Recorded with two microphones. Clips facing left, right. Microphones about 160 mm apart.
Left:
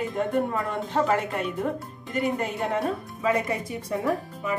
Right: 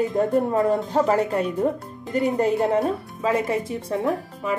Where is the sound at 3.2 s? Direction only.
30° right (ahead or behind).